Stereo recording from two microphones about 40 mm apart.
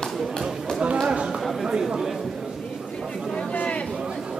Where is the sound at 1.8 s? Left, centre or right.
Centre.